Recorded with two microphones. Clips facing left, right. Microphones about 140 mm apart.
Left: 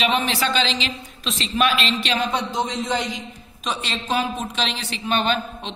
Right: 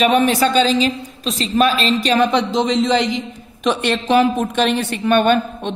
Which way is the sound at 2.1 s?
70° right (ahead or behind).